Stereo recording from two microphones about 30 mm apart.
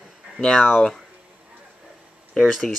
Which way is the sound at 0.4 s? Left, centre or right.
Centre.